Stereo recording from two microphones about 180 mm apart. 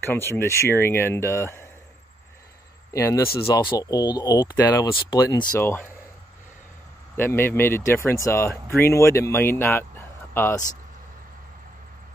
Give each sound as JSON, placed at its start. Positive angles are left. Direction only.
{"t": 0.0, "sound": "speech", "side_deg": 15}
{"t": 2.9, "sound": "speech", "side_deg": 15}
{"t": 7.2, "sound": "speech", "side_deg": 10}